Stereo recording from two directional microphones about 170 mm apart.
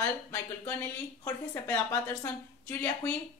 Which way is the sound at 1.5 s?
15° left (ahead or behind).